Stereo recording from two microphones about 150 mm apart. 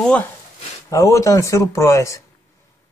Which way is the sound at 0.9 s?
20° left (ahead or behind).